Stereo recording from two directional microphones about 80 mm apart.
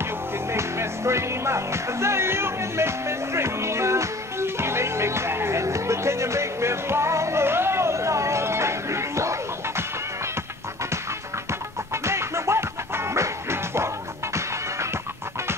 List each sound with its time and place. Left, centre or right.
0.0 s music: right
11.9 s music: right